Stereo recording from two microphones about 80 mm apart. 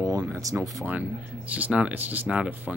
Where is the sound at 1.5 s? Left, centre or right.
Centre.